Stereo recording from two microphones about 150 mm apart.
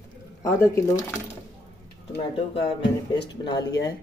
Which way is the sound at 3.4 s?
30° left (ahead or behind).